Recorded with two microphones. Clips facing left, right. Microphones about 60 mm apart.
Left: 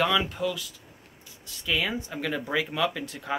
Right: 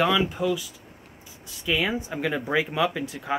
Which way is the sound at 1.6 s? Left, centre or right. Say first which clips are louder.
Right 3 dB; centre.